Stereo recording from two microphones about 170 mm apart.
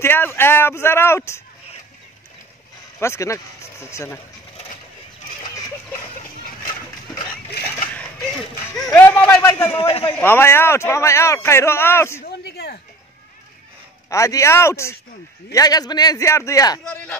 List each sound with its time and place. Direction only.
0.0 s speech: 15° left (ahead or behind)
3.0 s speech: 15° left (ahead or behind)
8.9 s a sound: 15° left (ahead or behind)
9.7 s a man's voice: 35° left (ahead or behind)
10.1 s speech: 10° left (ahead or behind)
12.3 s a sound: 70° left (ahead or behind)
14.1 s a man's voice: 15° left (ahead or behind)
16.8 s speech: 5° left (ahead or behind)